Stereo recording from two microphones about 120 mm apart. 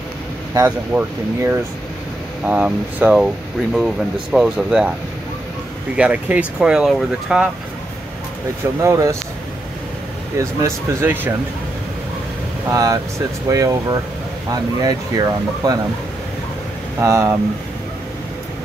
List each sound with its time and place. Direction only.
0.7 s speech: 15° right (ahead or behind)
5.9 s speech: 10° right (ahead or behind)
8.8 s speech: 25° right (ahead or behind)
10.6 s speech: 20° right (ahead or behind)
12.7 s speech: 30° right (ahead or behind)
17.0 s speech: 25° right (ahead or behind)